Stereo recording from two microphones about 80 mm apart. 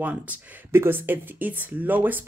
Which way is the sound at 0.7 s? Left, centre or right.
Right.